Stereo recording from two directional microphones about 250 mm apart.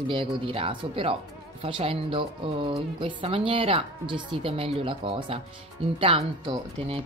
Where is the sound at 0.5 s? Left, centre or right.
Right.